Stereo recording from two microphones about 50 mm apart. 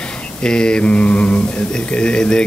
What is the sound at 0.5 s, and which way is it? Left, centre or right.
Speech, centre.